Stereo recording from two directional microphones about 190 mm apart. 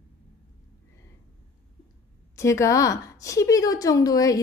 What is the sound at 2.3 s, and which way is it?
A woman's voice, 15° left (ahead or behind).